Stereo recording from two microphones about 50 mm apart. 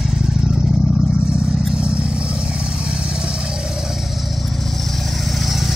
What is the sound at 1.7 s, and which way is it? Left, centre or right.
Vehicle, right.